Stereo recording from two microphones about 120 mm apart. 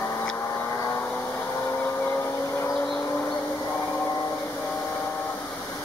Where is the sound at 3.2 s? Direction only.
5° left (ahead or behind).